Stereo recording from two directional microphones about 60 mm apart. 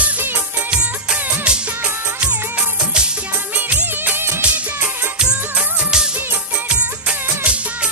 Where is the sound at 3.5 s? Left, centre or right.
Right.